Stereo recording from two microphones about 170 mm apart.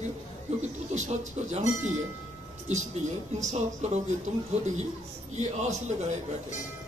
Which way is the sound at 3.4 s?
40° right (ahead or behind).